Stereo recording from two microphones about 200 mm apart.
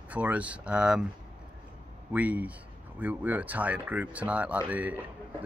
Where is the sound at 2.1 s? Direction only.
10° right (ahead or behind).